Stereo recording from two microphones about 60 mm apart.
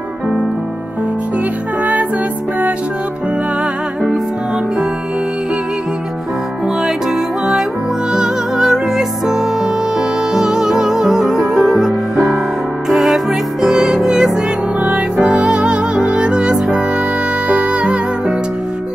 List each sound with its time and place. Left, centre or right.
8.1 s music: centre
14.8 s music: centre